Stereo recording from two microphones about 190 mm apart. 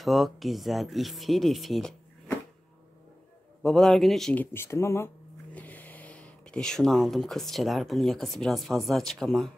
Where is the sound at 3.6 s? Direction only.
Centre (ahead or behind).